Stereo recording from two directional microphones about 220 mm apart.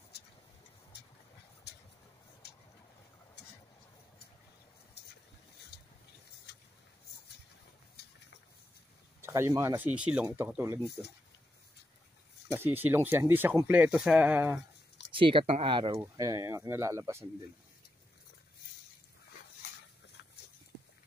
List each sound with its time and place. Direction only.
2.4 s boat: 45° left (ahead or behind)
5.7 s a sound: 45° left (ahead or behind)
9.2 s speech: 10° right (ahead or behind)
12.4 s speech: 10° right (ahead or behind)
15.1 s speech: 25° right (ahead or behind)
16.0 s speech: 15° right (ahead or behind)